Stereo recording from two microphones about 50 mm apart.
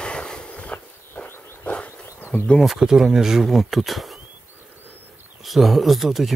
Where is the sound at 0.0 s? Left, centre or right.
Centre.